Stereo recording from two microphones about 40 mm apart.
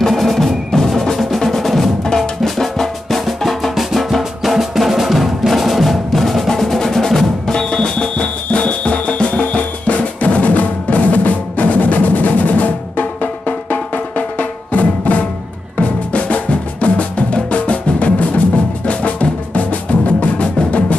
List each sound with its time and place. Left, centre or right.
0.1 s percussion: centre
2.1 s music: centre
7.5 s music: left
15.8 s drum: left
16.8 s music: left